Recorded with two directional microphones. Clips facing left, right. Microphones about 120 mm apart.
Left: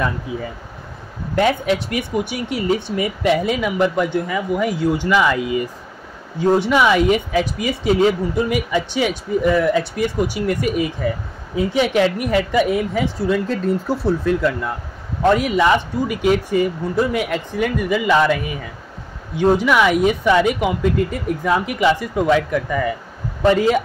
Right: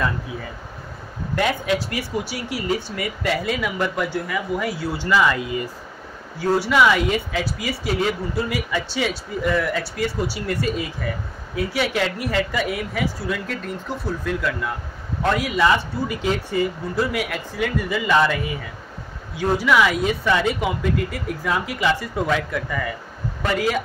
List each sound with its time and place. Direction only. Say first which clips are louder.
1.3 s speech: left 4 dB; 20° left (ahead or behind)
6.4 s speech: left 2 dB; 20° left (ahead or behind)
15.3 s speech: left 1 dB; 20° left (ahead or behind)